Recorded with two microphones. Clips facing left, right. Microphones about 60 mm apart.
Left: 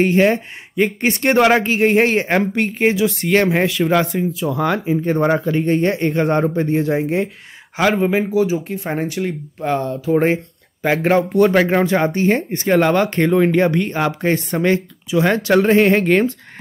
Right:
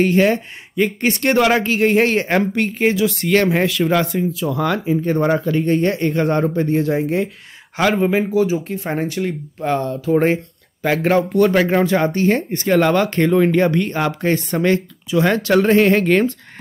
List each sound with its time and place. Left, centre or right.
0.0 s a woman's voice: centre
7.7 s a woman's voice: centre